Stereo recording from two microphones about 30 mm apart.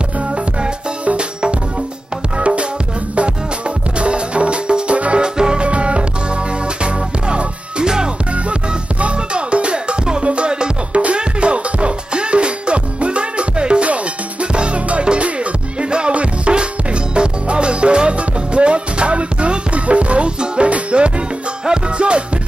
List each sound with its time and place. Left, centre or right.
2.3 s music: right
4.0 s music: right
5.6 s music: right
9.0 s music: right